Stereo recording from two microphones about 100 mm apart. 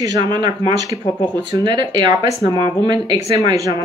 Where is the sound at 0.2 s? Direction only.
50° right (ahead or behind).